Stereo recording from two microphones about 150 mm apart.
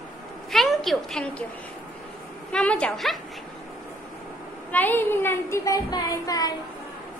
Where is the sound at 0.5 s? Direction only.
Centre (ahead or behind).